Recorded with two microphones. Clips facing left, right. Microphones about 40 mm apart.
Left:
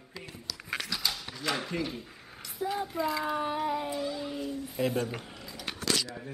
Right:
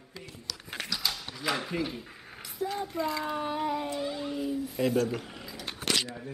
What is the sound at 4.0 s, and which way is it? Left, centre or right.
Speech, centre.